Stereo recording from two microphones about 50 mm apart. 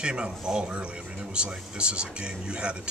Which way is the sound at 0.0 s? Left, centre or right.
Centre.